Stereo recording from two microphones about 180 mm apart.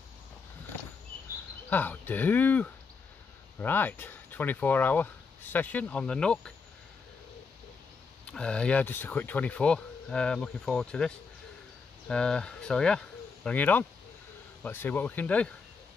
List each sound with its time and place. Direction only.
1.7 s speech: 10° left (ahead or behind)
8.3 s speech: 5° left (ahead or behind)